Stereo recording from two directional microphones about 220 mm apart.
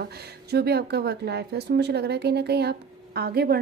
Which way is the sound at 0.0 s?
45° right (ahead or behind).